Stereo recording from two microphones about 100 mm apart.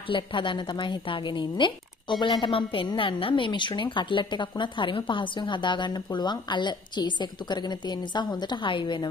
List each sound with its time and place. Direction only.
0.1 s a woman's voice: 55° left (ahead or behind)